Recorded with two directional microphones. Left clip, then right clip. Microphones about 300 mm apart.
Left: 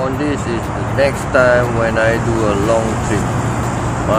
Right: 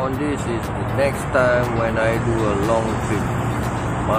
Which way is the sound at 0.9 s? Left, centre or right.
Centre.